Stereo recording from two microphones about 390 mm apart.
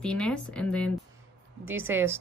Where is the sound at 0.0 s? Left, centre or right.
Centre.